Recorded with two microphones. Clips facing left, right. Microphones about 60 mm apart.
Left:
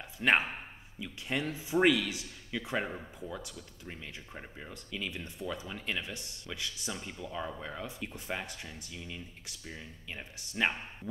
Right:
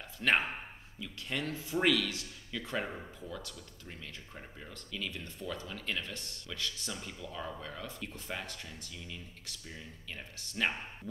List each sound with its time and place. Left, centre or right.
0.2 s speech: centre